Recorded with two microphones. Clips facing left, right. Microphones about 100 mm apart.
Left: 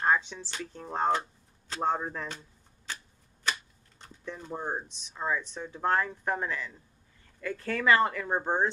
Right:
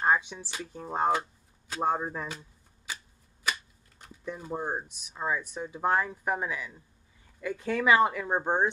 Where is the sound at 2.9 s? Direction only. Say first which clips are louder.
Even; 10° right (ahead or behind).